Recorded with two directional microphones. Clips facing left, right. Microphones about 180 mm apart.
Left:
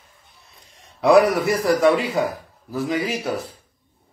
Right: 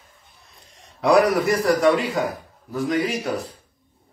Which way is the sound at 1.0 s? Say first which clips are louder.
Left 2 dB; centre (ahead or behind).